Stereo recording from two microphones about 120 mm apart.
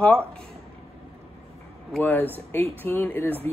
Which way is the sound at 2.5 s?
15° left (ahead or behind).